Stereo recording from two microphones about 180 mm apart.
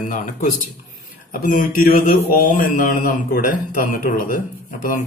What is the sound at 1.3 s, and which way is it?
Speech, 50° left (ahead or behind).